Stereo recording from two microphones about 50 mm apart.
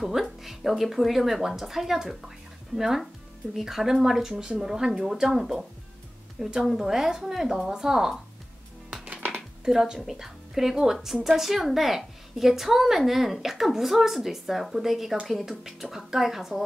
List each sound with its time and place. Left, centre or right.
0.0 s a woman's voice: centre
9.1 s music: right
9.7 s a woman's voice: centre